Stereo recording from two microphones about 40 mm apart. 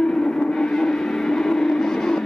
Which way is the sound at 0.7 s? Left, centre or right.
Centre.